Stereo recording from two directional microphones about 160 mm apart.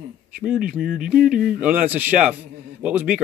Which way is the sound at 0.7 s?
65° right (ahead or behind).